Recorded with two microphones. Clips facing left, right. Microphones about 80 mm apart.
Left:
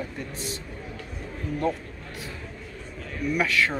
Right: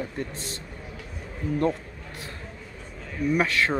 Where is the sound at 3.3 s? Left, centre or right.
Right.